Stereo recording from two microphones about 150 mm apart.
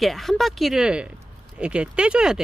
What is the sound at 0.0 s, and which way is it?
Speech, centre (ahead or behind).